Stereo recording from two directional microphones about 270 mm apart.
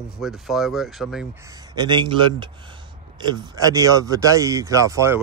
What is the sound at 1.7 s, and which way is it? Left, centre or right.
Speech, centre.